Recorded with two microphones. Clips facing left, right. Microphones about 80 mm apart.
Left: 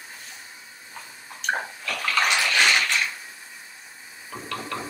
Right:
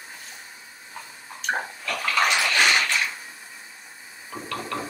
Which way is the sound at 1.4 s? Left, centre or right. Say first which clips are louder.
Even; centre.